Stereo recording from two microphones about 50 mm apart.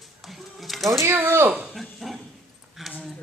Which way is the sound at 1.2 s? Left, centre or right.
Right.